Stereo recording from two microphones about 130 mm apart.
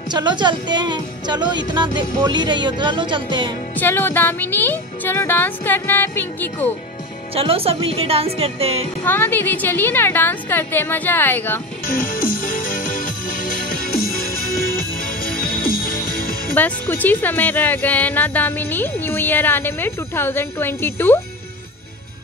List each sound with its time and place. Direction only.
0.1 s speech: 35° right (ahead or behind)
3.7 s speech: 15° left (ahead or behind)
7.3 s a woman's voice: 45° right (ahead or behind)
9.0 s speech: 15° left (ahead or behind)
11.9 s music: 90° left
15.3 s music: 90° left
16.5 s speech: 15° left (ahead or behind)